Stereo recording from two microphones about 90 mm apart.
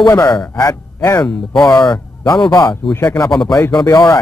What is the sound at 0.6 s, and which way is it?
Speech, 35° left (ahead or behind).